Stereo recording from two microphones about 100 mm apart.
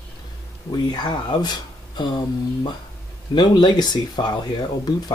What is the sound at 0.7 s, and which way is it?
Speech, 45° left (ahead or behind).